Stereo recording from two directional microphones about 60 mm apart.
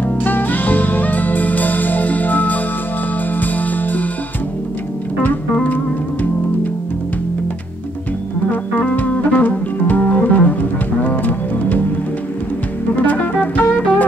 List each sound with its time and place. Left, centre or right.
0.2 s music: left
5.2 s organ: left
8.5 s music: left
13.0 s music: left